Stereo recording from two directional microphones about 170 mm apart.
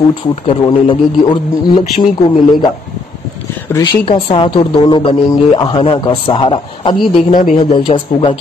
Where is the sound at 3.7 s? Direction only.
30° left (ahead or behind).